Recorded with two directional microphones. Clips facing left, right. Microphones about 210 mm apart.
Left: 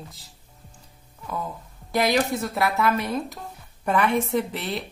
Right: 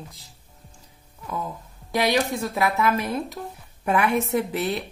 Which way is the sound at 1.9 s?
Centre (ahead or behind).